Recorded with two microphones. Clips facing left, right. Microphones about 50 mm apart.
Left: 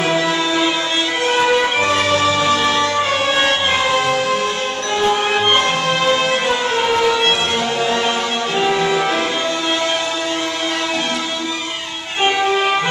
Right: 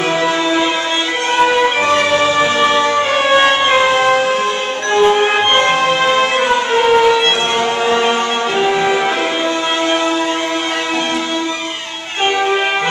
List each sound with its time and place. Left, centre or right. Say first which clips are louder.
0.1 s music: right 2 dB; centre
12.2 s violin: right 1 dB; centre